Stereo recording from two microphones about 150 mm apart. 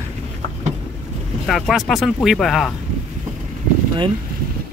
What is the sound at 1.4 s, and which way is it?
Speech, centre (ahead or behind).